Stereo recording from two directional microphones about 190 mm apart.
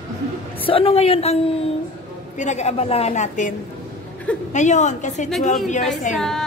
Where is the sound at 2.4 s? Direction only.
35° left (ahead or behind).